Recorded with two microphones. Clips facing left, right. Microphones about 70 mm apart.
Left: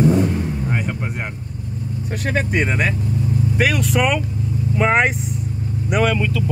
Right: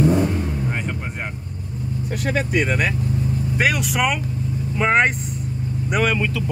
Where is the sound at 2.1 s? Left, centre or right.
Left.